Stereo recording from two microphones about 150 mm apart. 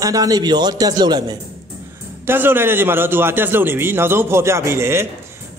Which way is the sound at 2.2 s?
15° right (ahead or behind).